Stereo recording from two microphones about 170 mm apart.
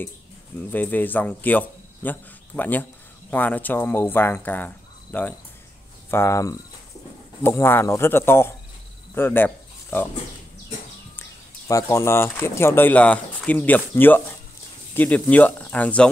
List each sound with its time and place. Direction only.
0.6 s speech: 10° left (ahead or behind)
9.1 s a sound: 10° left (ahead or behind)
11.1 s speech: 15° left (ahead or behind)